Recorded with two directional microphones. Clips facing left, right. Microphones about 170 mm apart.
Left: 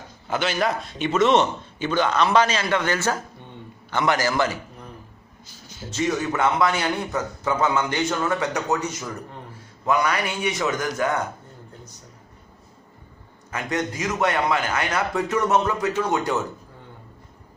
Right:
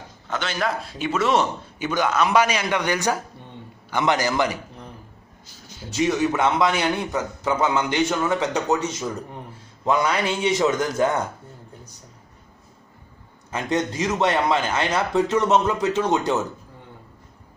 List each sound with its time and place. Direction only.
0.3 s a man's voice: 5° left (ahead or behind); by 4.6 s 15° right (ahead or behind)
5.9 s a man's voice: 10° right (ahead or behind)
13.5 s speech: 25° right (ahead or behind)